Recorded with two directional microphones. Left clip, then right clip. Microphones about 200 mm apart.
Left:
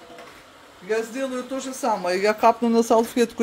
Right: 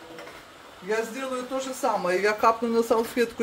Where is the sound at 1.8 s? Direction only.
50° left (ahead or behind).